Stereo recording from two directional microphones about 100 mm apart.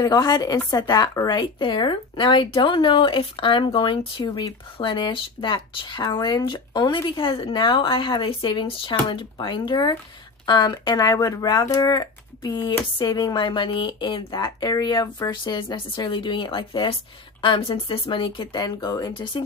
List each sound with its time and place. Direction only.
0.0 s a woman's voice: 40° left (ahead or behind)
11.6 s speech: 35° left (ahead or behind); by 18.6 s 55° left (ahead or behind)
18.6 s speech: 40° left (ahead or behind)